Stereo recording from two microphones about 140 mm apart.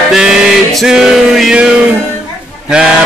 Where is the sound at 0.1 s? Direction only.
5° right (ahead or behind).